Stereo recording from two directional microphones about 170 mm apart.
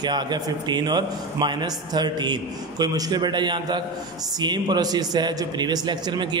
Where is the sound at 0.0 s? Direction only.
25° right (ahead or behind).